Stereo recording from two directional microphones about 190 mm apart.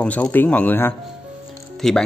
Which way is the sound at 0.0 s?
10° left (ahead or behind).